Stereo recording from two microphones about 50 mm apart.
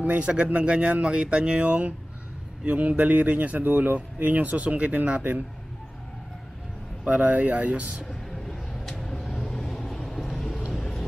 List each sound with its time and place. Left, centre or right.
0.0 s speech: right
7.1 s speech: right
8.5 s vehicle: centre